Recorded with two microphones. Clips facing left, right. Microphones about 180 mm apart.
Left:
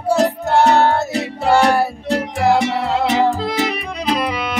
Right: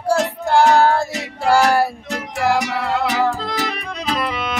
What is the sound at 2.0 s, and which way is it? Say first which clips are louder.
Music: left 4 dB; 30° left (ahead or behind).